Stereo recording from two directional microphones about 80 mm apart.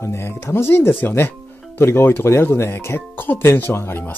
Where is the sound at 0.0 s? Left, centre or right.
Left.